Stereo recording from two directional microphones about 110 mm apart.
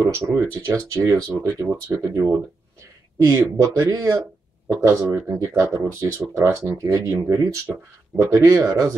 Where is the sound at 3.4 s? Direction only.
30° right (ahead or behind).